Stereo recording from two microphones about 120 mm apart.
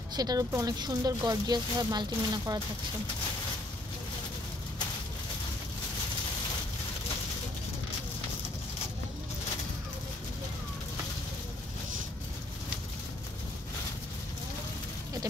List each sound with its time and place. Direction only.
0.1 s speech: 35° right (ahead or behind)